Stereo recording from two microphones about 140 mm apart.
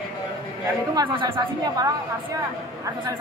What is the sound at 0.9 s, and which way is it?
Speech, 30° right (ahead or behind).